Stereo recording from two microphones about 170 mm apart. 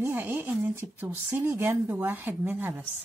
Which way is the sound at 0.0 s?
10° right (ahead or behind).